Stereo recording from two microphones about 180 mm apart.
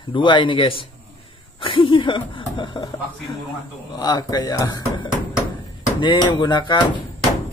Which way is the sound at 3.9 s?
20° left (ahead or behind).